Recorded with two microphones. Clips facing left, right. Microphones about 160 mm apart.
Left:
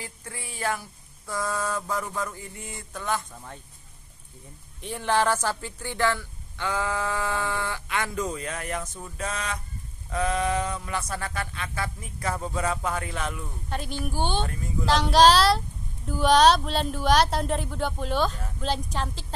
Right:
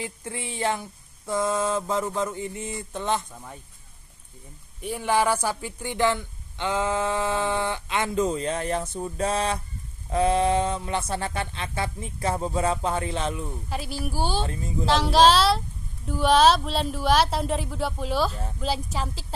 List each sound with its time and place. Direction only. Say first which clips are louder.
0.0 s a man's voice: right 6 dB; 20° right (ahead or behind)
4.8 s a man's voice: right 1 dB; 10° right (ahead or behind); by 13.5 s 25° right (ahead or behind)
13.7 s speech: left 2 dB; 5° right (ahead or behind)
14.4 s a man's voice: right 2 dB; 25° right (ahead or behind)
14.9 s speech: even; centre (ahead or behind)